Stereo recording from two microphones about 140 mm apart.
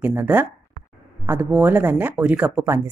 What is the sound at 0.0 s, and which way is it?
A woman's voice, 15° right (ahead or behind).